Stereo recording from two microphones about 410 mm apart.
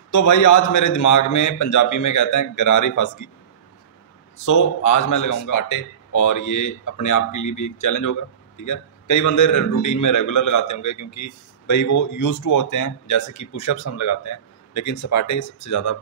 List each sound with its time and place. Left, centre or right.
0.1 s a man's voice: left
4.5 s a man's voice: left